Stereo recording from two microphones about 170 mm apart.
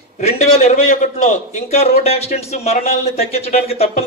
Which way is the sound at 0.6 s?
45° left (ahead or behind).